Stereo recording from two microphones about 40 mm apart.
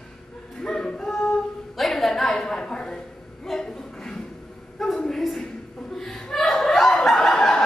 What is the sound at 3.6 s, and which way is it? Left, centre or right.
Chuckle, centre.